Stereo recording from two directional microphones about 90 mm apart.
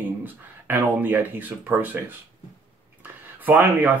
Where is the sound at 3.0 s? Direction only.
20° right (ahead or behind).